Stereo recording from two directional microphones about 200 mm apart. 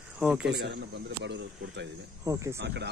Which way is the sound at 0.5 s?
55° right (ahead or behind).